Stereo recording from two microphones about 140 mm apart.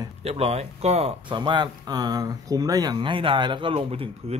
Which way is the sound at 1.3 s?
35° right (ahead or behind).